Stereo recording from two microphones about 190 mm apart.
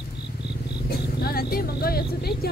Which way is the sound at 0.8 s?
55° left (ahead or behind).